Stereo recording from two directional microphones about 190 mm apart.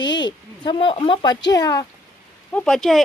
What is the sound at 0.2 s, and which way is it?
A woman's voice, 25° left (ahead or behind).